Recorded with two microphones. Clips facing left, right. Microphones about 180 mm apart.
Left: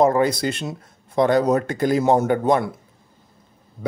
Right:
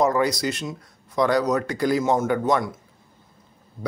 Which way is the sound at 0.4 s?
55° left (ahead or behind).